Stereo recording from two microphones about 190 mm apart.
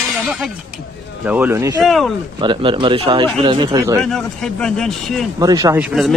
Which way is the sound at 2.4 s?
25° right (ahead or behind).